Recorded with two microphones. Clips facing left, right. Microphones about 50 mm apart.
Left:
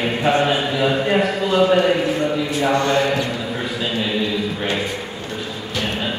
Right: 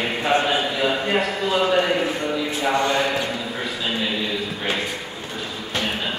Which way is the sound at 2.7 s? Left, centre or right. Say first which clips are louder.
Left 2 dB; centre.